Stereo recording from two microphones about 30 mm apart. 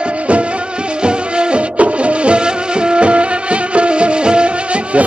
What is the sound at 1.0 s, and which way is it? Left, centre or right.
Music, right.